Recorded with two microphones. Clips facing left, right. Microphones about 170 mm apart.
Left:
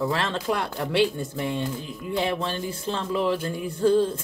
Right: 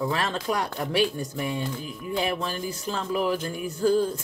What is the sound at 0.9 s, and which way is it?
Speech, 25° left (ahead or behind).